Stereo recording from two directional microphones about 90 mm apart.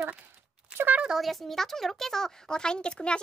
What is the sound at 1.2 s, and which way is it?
Speech, centre (ahead or behind).